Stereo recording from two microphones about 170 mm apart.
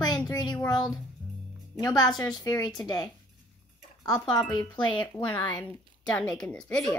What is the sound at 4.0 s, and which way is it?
Speech, 25° left (ahead or behind).